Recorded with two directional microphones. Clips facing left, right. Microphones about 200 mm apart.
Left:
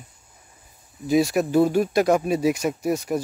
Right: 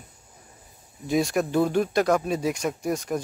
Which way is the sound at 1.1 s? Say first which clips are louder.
Left 4 dB; 5° left (ahead or behind).